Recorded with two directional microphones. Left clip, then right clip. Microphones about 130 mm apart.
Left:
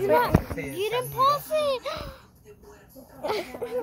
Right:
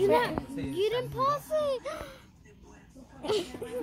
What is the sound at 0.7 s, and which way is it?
A child's voice, 60° right (ahead or behind).